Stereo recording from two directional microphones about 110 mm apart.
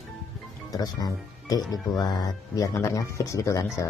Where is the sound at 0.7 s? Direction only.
35° left (ahead or behind).